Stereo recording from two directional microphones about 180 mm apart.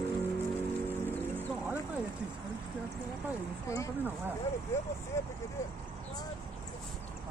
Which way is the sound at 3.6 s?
15° left (ahead or behind).